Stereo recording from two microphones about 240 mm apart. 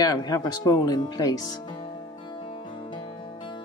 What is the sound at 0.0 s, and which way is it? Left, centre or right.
Speech, centre.